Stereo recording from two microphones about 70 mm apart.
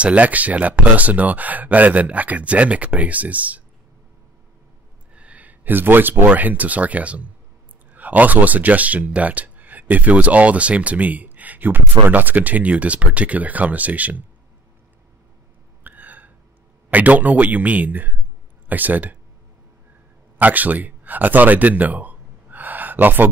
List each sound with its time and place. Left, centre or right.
0.0 s speech: centre
5.1 s speech: centre
15.8 s hiccup: right
16.9 s speech: right
20.3 s speech: right